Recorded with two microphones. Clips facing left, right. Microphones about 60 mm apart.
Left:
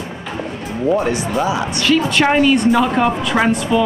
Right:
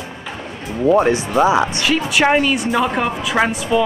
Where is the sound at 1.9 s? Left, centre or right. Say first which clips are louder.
Left 4 dB; centre.